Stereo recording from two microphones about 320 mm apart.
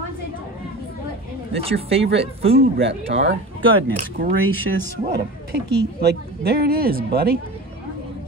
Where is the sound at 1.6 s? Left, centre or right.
Centre.